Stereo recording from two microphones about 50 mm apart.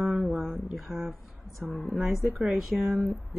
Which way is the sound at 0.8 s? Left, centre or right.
Right.